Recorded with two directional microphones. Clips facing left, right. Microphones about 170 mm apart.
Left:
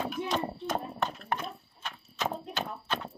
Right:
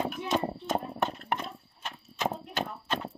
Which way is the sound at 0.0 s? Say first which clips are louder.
Right 2 dB; 25° right (ahead or behind).